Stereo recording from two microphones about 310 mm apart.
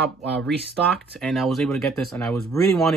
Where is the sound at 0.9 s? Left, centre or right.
Centre.